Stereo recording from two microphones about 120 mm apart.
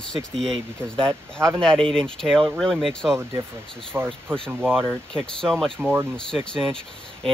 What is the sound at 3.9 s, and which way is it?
Speech, 15° right (ahead or behind).